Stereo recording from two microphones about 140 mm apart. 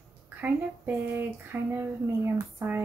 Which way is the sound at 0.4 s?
15° right (ahead or behind).